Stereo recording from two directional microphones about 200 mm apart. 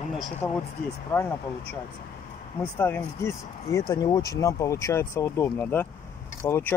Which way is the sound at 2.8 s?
10° left (ahead or behind).